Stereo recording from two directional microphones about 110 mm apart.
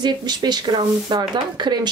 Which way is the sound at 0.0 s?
40° right (ahead or behind).